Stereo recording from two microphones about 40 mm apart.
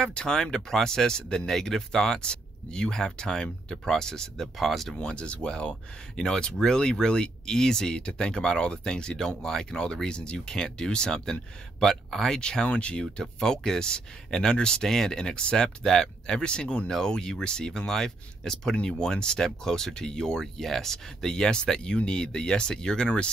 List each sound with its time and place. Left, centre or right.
0.0 s speech: left
4.6 s speech: centre
4.9 s speech: left
12.6 s speech: left
13.0 s speech: centre